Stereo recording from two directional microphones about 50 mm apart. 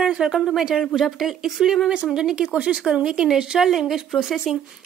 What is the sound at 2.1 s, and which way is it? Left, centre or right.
A woman's voice, centre.